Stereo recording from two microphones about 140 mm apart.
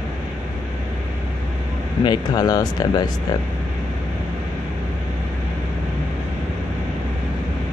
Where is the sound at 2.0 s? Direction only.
30° left (ahead or behind).